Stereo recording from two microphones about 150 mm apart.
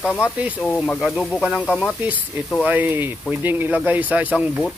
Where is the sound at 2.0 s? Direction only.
10° right (ahead or behind).